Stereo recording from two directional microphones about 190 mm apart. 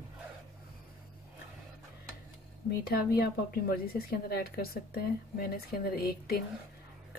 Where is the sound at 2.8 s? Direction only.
55° left (ahead or behind).